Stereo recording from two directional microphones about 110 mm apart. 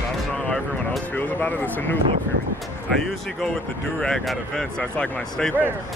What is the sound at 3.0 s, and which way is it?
Speech, 5° left (ahead or behind).